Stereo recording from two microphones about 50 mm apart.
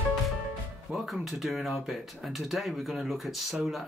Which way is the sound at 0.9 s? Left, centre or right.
Centre.